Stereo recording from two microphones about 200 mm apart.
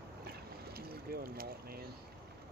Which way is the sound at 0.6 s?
50° right (ahead or behind).